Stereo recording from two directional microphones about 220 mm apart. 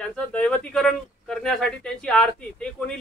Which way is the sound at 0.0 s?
5° left (ahead or behind).